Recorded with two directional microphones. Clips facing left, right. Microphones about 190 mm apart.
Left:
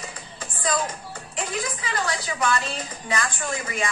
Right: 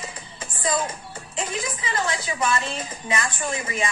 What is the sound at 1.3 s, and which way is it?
A woman's voice, 25° right (ahead or behind).